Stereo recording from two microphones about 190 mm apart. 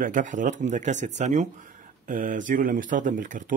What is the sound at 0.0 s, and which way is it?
Speech, 45° right (ahead or behind).